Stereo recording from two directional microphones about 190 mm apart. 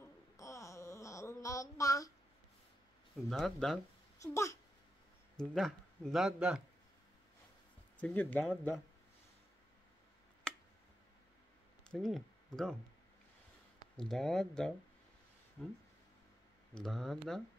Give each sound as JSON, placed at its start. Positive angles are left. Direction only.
{"t": 0.4, "sound": "wail", "side_deg": 15}
{"t": 3.3, "sound": "speech", "side_deg": 5}
{"t": 4.2, "sound": "speech", "side_deg": 15}
{"t": 5.4, "sound": "speech", "side_deg": 0}
{"t": 8.0, "sound": "speech", "side_deg": 10}
{"t": 10.5, "sound": "tick", "side_deg": 5}
{"t": 11.9, "sound": "speech", "side_deg": 0}
{"t": 13.9, "sound": "speech", "side_deg": 0}